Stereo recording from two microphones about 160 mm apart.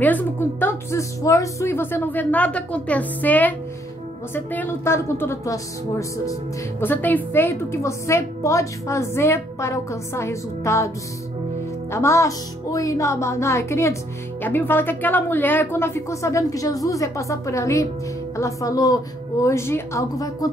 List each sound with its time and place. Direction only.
0.0 s a woman's voice: 10° left (ahead or behind)
11.9 s a woman's voice: 20° left (ahead or behind)